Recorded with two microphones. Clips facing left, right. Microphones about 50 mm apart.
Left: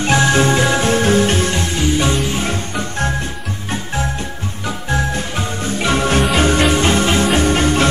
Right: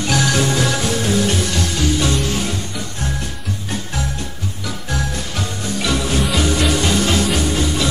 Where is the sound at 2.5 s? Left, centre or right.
Left.